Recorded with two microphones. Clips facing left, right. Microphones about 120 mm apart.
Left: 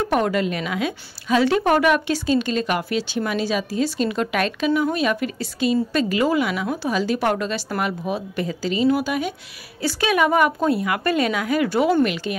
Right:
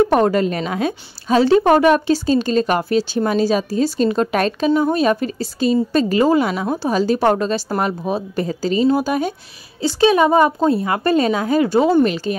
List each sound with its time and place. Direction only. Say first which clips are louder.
0.1 s a woman's voice: right 5 dB; 35° right (ahead or behind)
9.8 s a woman's voice: right 6 dB; 25° right (ahead or behind)